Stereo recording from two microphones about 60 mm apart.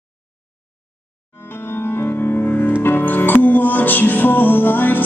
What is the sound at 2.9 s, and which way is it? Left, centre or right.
Music, left.